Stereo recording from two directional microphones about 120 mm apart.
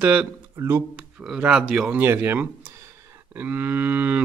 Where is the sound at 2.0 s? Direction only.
20° right (ahead or behind).